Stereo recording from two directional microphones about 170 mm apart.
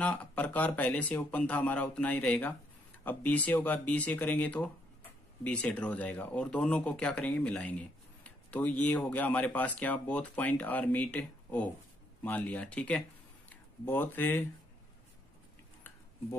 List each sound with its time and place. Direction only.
0.0 s speech: 10° left (ahead or behind)